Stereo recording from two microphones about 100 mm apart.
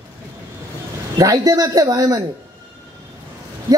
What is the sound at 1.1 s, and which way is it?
A man's voice, 40° right (ahead or behind).